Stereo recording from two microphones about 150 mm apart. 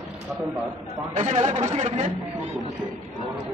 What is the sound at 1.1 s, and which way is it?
Speech, 50° right (ahead or behind).